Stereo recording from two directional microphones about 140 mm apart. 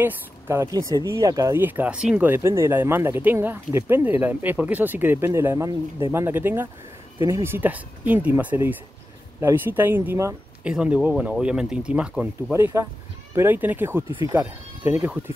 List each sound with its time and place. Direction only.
0.0 s speech: 20° right (ahead or behind)
12.5 s speech: 20° right (ahead or behind)